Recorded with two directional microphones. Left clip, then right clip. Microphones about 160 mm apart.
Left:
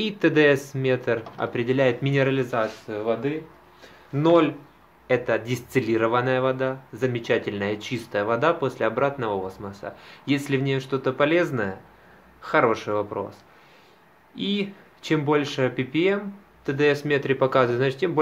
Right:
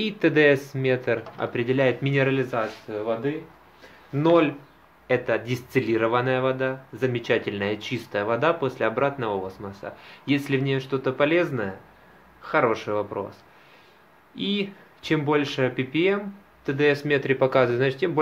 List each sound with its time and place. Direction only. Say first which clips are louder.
0.0 s speech: even; 5° left (ahead or behind)
2.9 s speech: left 1 dB; 20° left (ahead or behind)
4.1 s speech: left 1 dB; 5° left (ahead or behind)